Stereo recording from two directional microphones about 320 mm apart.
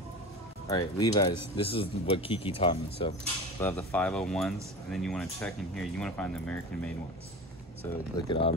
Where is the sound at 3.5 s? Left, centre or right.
Centre.